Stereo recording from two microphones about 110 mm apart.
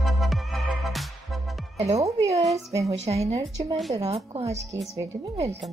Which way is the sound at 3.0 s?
70° right (ahead or behind).